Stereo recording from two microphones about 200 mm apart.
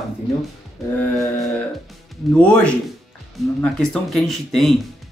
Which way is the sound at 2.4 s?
5° left (ahead or behind).